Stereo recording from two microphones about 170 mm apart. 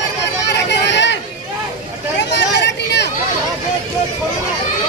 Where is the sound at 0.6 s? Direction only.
90° left.